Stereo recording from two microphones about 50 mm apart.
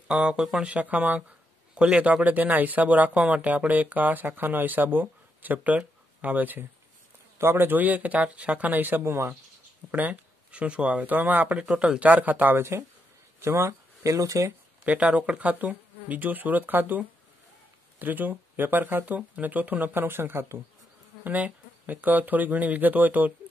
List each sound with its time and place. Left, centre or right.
0.2 s speech: centre
0.6 s speech: right
7.3 s speech: right
9.0 s speech: right
9.8 s speech: right
11.7 s speech: centre
12.1 s speech: right
12.5 s speech: right
14.9 s speech: right
20.0 s speech: right
21.2 s speech: right